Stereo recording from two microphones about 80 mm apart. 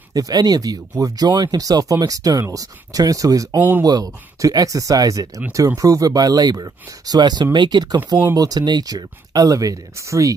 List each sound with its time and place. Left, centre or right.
0.1 s speech: right
3.5 s speech: right
3.8 s speech: right